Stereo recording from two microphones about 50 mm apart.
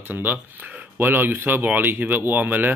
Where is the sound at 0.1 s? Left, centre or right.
Right.